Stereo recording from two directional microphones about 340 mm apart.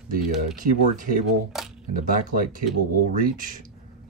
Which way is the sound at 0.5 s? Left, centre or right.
Right.